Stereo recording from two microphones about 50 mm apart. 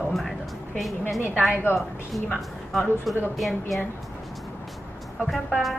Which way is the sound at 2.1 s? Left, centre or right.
Left.